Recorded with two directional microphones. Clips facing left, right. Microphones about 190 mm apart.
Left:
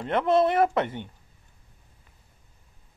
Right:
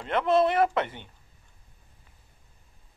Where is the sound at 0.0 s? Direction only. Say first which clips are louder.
Left 1 dB; 20° left (ahead or behind).